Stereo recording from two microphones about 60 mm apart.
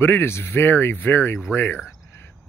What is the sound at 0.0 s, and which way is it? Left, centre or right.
Speech, left.